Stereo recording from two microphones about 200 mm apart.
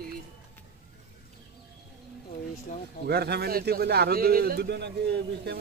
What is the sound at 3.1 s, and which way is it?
Speech, 55° right (ahead or behind).